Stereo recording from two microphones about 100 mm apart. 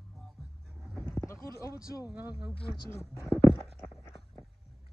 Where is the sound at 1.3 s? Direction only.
30° left (ahead or behind).